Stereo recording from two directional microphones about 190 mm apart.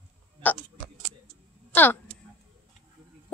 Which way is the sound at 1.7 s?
10° left (ahead or behind).